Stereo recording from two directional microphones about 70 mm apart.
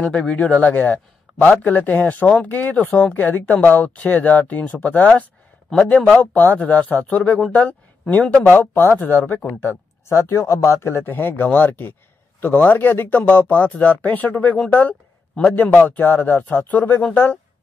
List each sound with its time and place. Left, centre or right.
0.1 s a man's voice: centre